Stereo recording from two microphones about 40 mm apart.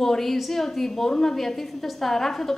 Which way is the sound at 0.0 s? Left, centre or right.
Centre.